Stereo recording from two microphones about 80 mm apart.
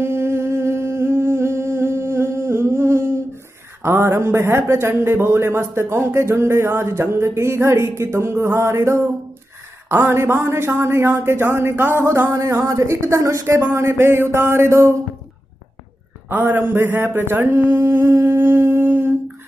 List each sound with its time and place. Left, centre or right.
0.0 s humming: right
3.8 s a man's voice: right
16.3 s mantra: right